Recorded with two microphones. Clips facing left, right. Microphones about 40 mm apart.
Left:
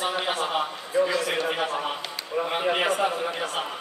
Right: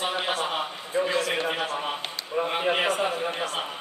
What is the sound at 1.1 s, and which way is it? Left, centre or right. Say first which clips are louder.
Speech: even; right.